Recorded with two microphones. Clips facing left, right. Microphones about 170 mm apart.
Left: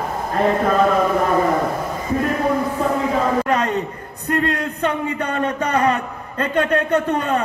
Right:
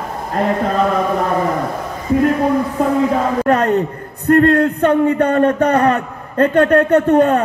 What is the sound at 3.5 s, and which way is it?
A man's voice, 55° right (ahead or behind).